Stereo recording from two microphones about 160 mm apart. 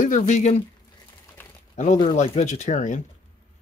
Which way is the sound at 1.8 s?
50° left (ahead or behind).